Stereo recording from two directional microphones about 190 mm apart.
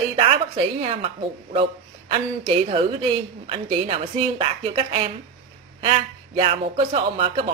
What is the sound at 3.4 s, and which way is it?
A woman's voice, 30° right (ahead or behind).